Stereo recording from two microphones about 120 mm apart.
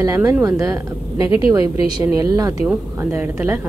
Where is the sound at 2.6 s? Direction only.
15° right (ahead or behind).